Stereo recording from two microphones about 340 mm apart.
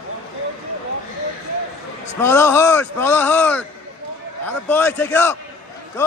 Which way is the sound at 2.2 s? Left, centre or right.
Centre.